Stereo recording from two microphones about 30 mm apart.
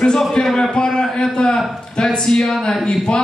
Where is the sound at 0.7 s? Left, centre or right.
Left.